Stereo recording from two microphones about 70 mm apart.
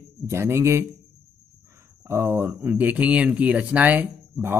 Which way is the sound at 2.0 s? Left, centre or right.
Right.